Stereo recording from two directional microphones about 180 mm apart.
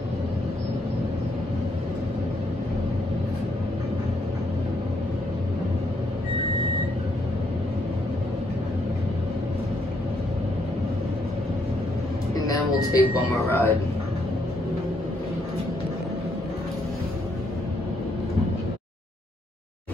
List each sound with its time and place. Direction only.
12.4 s speech: 20° left (ahead or behind)